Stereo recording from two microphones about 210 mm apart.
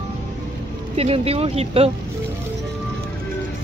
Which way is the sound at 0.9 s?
30° right (ahead or behind).